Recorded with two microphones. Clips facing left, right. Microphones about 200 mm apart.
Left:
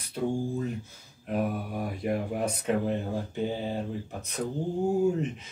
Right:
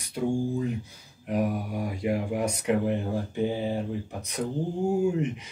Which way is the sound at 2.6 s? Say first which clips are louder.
Right 2 dB; 15° right (ahead or behind).